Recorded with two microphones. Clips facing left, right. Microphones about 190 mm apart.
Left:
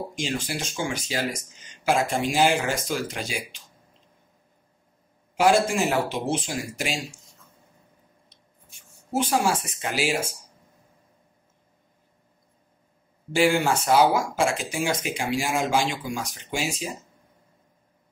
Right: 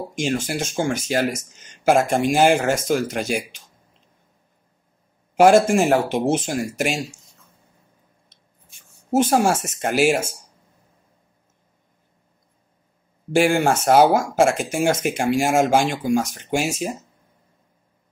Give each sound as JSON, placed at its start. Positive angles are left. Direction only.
{"t": 0.1, "sound": "speech", "side_deg": -50}
{"t": 5.3, "sound": "speech", "side_deg": -45}
{"t": 9.1, "sound": "speech", "side_deg": -45}
{"t": 13.3, "sound": "speech", "side_deg": -50}